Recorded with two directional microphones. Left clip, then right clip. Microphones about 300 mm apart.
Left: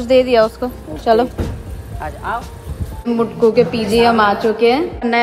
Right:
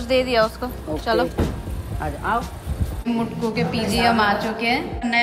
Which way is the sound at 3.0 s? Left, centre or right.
Centre.